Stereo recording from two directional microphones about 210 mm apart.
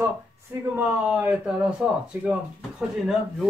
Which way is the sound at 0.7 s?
5° right (ahead or behind).